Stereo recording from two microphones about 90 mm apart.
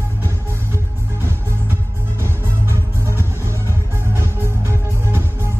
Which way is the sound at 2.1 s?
30° right (ahead or behind).